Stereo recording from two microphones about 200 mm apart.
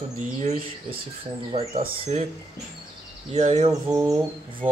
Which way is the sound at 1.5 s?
30° right (ahead or behind).